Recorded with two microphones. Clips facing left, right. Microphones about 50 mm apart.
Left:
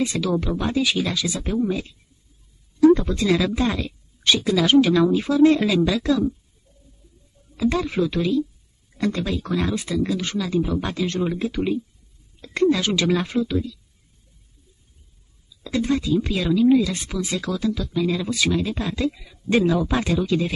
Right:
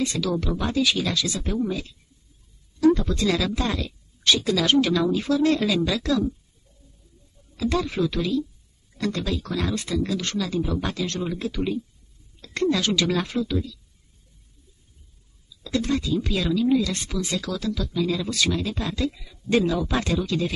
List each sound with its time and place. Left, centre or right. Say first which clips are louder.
0.0 s a woman's voice: left 2 dB; centre
7.5 s speech: left 3 dB; centre
15.6 s speech: left 2 dB; centre